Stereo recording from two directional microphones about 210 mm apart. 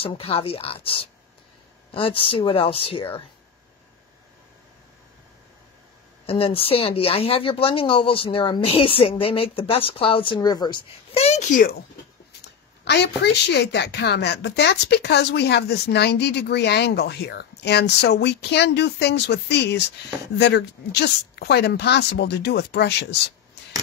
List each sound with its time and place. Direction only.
0.0 s speech: 25° left (ahead or behind)
6.2 s speech: 25° left (ahead or behind)
12.8 s a woman's voice: 55° left (ahead or behind)